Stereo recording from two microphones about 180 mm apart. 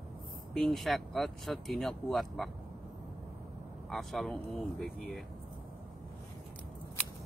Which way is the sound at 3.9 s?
Centre (ahead or behind).